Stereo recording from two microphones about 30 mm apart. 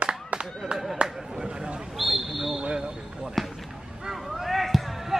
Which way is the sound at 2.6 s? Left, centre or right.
Right.